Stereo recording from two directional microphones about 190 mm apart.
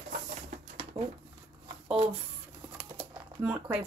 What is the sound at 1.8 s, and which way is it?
Speech, 10° right (ahead or behind).